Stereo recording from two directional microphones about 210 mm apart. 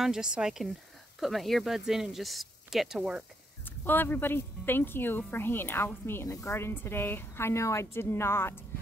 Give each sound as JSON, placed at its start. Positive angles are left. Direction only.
{"t": 0.0, "sound": "speech", "side_deg": -5}
{"t": 3.6, "sound": "a woman's voice", "side_deg": 10}